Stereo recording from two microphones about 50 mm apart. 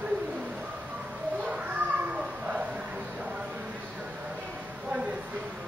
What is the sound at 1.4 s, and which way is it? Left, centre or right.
A child's voice, right.